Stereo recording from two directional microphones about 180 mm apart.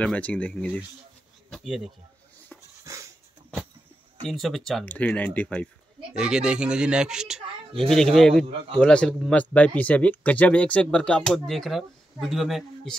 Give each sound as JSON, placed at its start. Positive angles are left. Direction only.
{"t": 0.0, "sound": "speech", "side_deg": 5}
{"t": 1.5, "sound": "a sound", "side_deg": 0}
{"t": 2.8, "sound": "dog", "side_deg": -15}
{"t": 4.2, "sound": "speech", "side_deg": 0}
{"t": 6.1, "sound": "speech", "side_deg": -5}